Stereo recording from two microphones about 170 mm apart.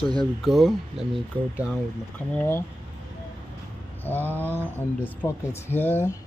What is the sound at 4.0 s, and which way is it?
Mantra, 10° left (ahead or behind).